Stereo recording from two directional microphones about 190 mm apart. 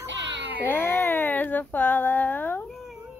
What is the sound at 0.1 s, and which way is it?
Baby cry, 70° right (ahead or behind).